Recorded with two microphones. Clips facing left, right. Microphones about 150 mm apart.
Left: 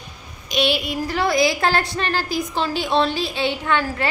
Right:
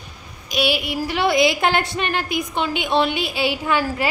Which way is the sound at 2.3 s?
30° left (ahead or behind).